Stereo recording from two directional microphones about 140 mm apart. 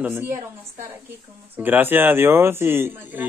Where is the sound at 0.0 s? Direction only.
15° right (ahead or behind).